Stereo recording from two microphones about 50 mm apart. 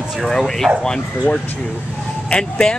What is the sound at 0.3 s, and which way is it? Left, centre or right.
Speech, centre.